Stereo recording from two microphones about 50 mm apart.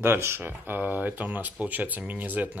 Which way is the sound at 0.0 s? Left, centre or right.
Right.